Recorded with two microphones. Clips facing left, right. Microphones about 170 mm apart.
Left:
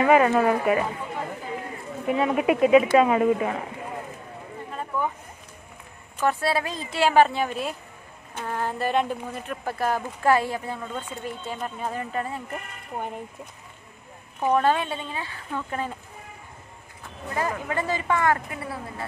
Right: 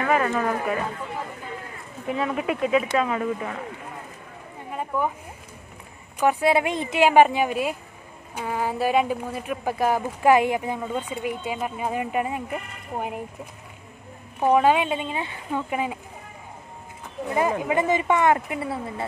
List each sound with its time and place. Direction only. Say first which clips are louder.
0.1 s speech: left 3 dB; 15° left (ahead or behind)
2.0 s speech: left 4 dB; 5° left (ahead or behind)
4.6 s a sound: right 3 dB; 10° right (ahead or behind)
6.1 s speech: right 4 dB; 15° right (ahead or behind)
14.4 s speech: right 3 dB; 10° right (ahead or behind)
17.3 s speech: right 5 dB; 20° right (ahead or behind)